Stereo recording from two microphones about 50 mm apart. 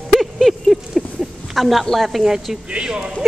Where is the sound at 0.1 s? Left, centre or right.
Centre.